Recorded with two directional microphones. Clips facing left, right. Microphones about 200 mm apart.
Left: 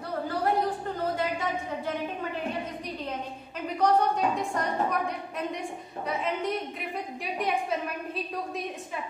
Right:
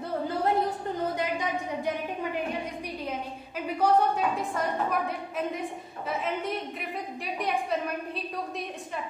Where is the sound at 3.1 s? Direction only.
10° right (ahead or behind).